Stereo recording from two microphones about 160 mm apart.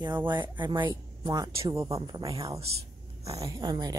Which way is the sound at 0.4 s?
30° right (ahead or behind).